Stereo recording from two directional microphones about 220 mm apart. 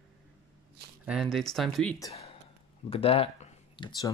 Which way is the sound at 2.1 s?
30° left (ahead or behind).